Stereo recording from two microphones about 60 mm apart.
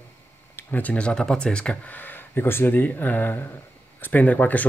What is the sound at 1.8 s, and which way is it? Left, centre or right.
Speech, left.